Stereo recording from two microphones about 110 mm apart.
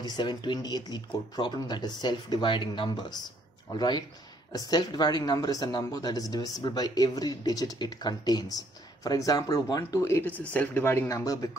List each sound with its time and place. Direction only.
0.0 s speech: 40° left (ahead or behind); by 10.3 s 25° left (ahead or behind)
10.3 s speech: 15° left (ahead or behind); by 11.5 s 30° left (ahead or behind)